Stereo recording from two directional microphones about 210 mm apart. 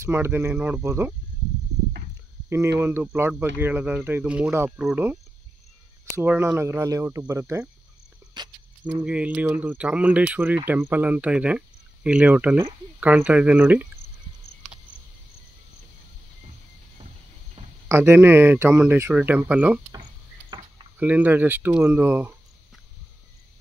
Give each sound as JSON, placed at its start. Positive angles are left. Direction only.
{"t": 0.0, "sound": "speech", "side_deg": -10}
{"t": 2.8, "sound": "speech", "side_deg": -10}
{"t": 8.8, "sound": "speech", "side_deg": -5}
{"t": 17.8, "sound": "speech", "side_deg": -10}
{"t": 20.4, "sound": "a sound", "side_deg": -20}
{"t": 21.0, "sound": "speech", "side_deg": -10}